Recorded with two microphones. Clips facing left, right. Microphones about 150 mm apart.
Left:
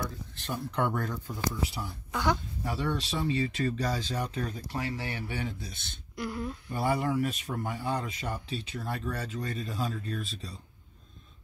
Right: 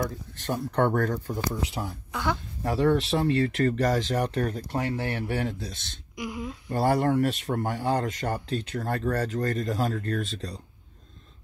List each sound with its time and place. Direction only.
0.0 s speech: 55° right (ahead or behind); by 1.9 s 85° right
2.1 s speech: centre (ahead or behind)
2.6 s speech: 70° right (ahead or behind)
6.1 s speech: 10° right (ahead or behind)
6.7 s speech: 70° right (ahead or behind); by 8.5 s 90° right
8.7 s speech: 70° right (ahead or behind); by 10.6 s 90° right